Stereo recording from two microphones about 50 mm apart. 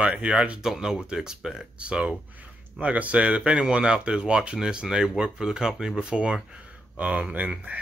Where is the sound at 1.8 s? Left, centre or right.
Right.